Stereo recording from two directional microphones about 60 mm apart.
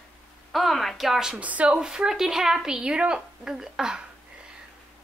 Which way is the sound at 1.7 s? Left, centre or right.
Centre.